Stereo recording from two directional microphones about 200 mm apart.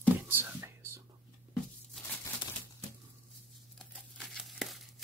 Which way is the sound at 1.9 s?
5° left (ahead or behind).